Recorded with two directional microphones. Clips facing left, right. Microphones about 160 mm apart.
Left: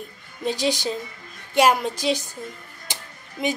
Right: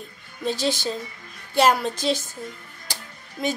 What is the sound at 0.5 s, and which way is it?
A woman's voice, 15° left (ahead or behind).